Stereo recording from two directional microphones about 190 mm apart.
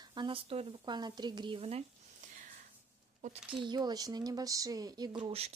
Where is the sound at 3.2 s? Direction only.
40° right (ahead or behind).